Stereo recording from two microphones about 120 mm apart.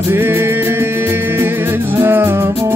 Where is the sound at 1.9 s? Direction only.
20° right (ahead or behind).